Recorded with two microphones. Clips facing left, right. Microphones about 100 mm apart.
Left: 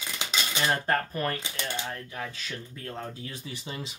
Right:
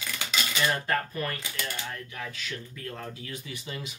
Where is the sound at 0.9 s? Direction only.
40° left (ahead or behind).